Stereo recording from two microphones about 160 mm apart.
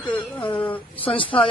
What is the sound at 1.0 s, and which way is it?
Speech, 35° left (ahead or behind).